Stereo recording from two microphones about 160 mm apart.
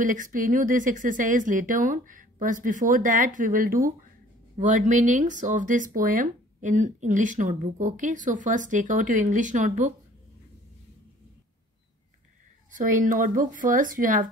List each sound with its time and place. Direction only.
0.0 s speech: 55° right (ahead or behind)
12.7 s speech: 55° right (ahead or behind)